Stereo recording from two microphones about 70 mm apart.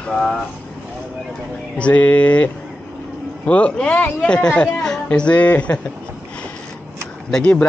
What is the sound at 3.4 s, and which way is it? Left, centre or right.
A woman's voice, centre.